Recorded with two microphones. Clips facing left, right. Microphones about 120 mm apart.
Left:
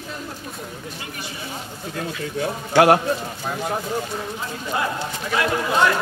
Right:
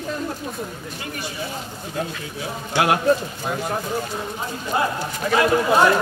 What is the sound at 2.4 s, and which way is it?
Speech, 45° left (ahead or behind).